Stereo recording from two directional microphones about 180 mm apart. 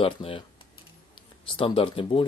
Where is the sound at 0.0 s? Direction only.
30° left (ahead or behind).